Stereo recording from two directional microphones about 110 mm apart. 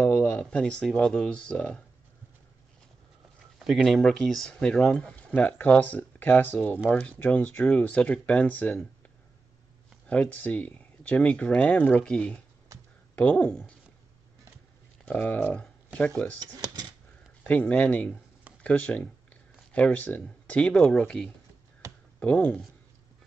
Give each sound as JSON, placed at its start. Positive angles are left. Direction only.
{"t": 0.0, "sound": "speech", "side_deg": 15}
{"t": 3.6, "sound": "speech", "side_deg": 0}
{"t": 10.0, "sound": "speech", "side_deg": 15}
{"t": 15.0, "sound": "speech", "side_deg": 15}
{"t": 16.3, "sound": "speech", "side_deg": -40}
{"t": 17.4, "sound": "speech", "side_deg": 15}